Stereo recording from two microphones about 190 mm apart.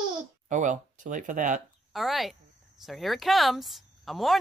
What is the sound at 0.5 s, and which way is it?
Speech, 40° right (ahead or behind).